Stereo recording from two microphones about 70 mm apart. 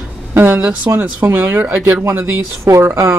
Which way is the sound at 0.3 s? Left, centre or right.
Right.